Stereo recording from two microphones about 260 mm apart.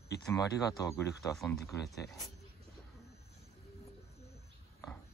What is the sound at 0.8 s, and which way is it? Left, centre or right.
Speech, centre.